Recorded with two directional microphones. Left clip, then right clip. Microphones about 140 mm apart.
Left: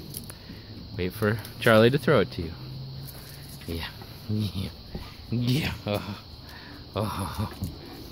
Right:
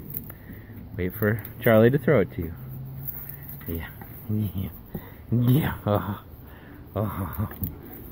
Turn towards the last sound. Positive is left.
turn(degrees=0)  # may be behind; listen again after turning